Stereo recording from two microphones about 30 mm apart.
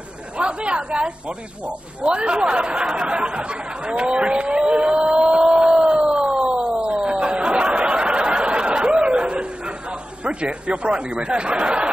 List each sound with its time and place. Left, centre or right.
0.4 s a man's voice: right
4.6 s vehicle: right
10.4 s a man's voice: right